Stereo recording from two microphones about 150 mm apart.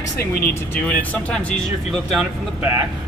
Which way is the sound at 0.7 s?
10° left (ahead or behind).